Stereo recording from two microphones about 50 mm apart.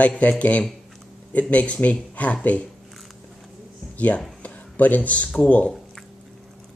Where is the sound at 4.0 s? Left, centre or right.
Left.